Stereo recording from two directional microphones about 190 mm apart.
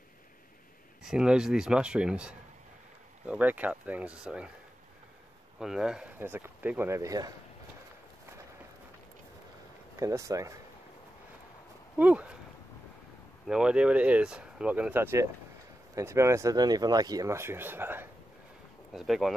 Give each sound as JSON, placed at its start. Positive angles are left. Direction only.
{"t": 1.0, "sound": "speech", "side_deg": -5}
{"t": 5.6, "sound": "speech", "side_deg": -5}
{"t": 9.9, "sound": "speech", "side_deg": -15}
{"t": 12.0, "sound": "speech", "side_deg": -5}
{"t": 13.5, "sound": "speech", "side_deg": -5}